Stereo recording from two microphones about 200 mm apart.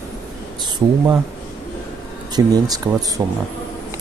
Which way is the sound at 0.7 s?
15° right (ahead or behind).